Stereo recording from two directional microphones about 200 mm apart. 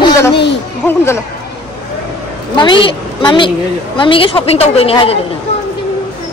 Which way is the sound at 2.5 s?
25° left (ahead or behind).